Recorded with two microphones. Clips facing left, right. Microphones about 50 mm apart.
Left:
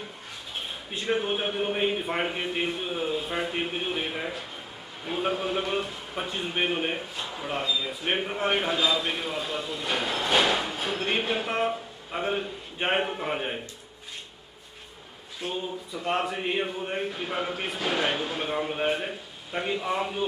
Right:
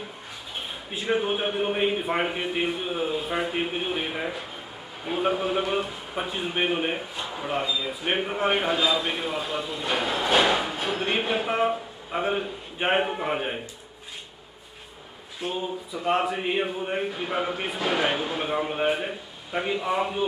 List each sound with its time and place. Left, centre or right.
0.9 s a man's voice: centre
15.4 s speech: centre